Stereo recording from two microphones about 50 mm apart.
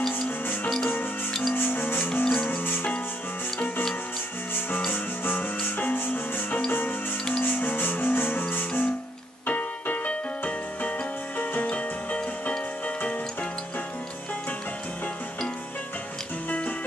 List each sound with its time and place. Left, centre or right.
1.5 s music: left
2.2 s music: centre
4.6 s music: left
9.5 s keyboard: left
11.6 s music: left
16.4 s music: left